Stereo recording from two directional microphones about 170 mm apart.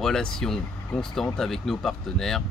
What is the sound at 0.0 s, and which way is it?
Speech, 5° left (ahead or behind).